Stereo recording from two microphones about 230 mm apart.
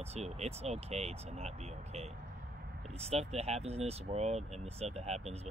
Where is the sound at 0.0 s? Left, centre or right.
Right.